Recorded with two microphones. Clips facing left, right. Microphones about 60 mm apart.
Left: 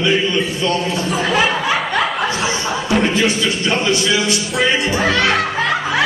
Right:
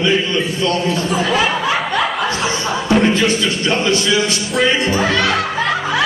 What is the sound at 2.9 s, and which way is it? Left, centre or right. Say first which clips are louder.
Speech: right 2 dB; centre.